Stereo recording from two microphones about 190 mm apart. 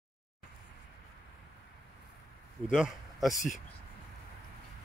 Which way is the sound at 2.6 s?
5° right (ahead or behind).